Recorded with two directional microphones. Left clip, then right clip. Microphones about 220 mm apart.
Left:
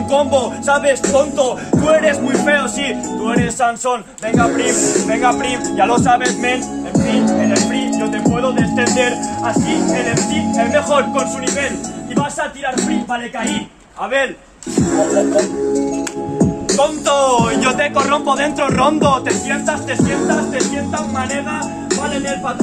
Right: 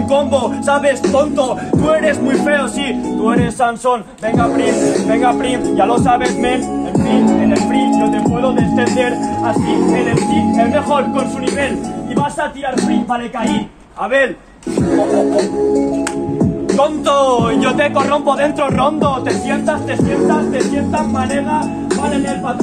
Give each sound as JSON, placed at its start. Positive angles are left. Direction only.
{"t": 0.1, "sound": "speech", "side_deg": -10}
{"t": 6.9, "sound": "speech", "side_deg": 25}
{"t": 8.0, "sound": "speech", "side_deg": 0}
{"t": 9.7, "sound": "music", "side_deg": 30}
{"t": 10.6, "sound": "speech", "side_deg": 10}
{"t": 14.9, "sound": "music", "side_deg": 40}
{"t": 16.7, "sound": "speech", "side_deg": 0}